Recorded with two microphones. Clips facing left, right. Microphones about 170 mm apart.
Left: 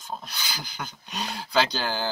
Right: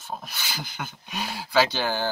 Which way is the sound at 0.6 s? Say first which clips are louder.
Right 2 dB; 50° right (ahead or behind).